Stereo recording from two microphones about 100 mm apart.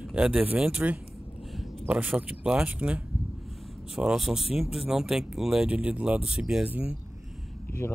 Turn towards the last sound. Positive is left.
turn(degrees=25)  # may be behind; listen again after turning